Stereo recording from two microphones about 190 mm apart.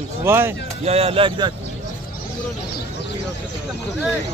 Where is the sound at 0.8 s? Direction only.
30° right (ahead or behind).